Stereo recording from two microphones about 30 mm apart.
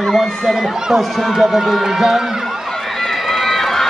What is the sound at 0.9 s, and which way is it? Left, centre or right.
A man's voice, centre.